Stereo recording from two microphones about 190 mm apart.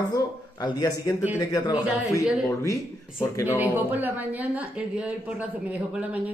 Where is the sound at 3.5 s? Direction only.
10° right (ahead or behind).